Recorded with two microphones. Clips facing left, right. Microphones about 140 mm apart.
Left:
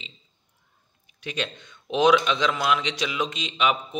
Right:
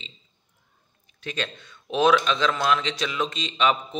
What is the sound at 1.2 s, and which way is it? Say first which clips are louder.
A man's voice: even; 15° left (ahead or behind).